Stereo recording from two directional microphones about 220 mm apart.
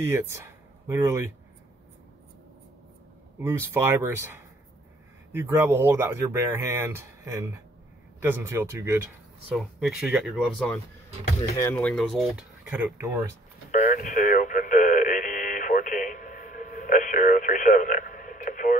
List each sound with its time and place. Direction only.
0.0 s speech: 10° right (ahead or behind)
3.3 s speech: 10° right (ahead or behind)
13.7 s radio: 35° left (ahead or behind)